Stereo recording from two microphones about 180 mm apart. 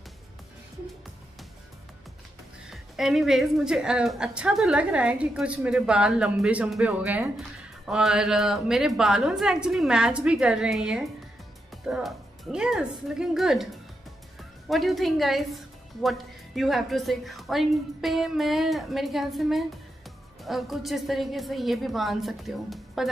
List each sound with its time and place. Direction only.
2.7 s a woman's voice: centre (ahead or behind)
14.7 s a woman's voice: centre (ahead or behind)